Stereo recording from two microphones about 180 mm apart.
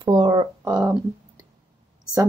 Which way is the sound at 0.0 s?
25° right (ahead or behind).